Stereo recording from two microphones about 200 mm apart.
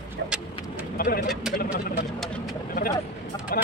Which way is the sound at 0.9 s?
45° left (ahead or behind).